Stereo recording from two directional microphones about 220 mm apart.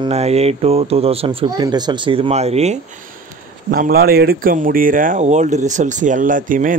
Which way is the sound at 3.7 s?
40° right (ahead or behind).